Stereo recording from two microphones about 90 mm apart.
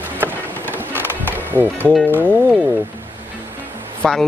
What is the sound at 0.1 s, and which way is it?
Music, 20° right (ahead or behind).